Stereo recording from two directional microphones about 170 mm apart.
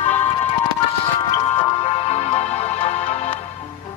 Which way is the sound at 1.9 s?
40° left (ahead or behind).